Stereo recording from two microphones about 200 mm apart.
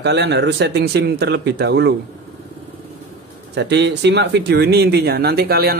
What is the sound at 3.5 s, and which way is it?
Speech, 60° right (ahead or behind).